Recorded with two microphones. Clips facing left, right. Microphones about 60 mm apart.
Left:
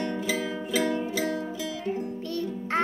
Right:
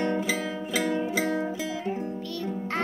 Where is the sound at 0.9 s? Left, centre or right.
Right.